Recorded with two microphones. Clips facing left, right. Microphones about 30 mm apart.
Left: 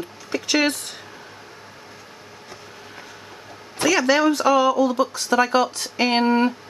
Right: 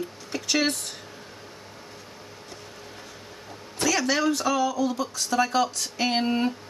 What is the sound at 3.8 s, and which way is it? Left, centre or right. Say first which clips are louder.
Speech: left 6 dB; left.